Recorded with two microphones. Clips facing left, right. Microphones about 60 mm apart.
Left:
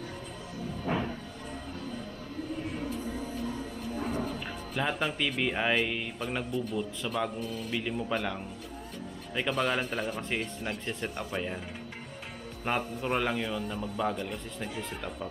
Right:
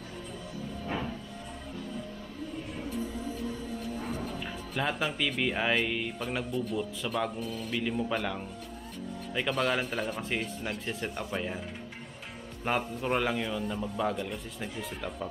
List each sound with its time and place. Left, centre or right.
3.9 s a sound: left
4.2 s speech: centre
12.6 s speech: centre